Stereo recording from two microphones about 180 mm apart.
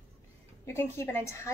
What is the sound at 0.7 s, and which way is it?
Speech, 15° left (ahead or behind).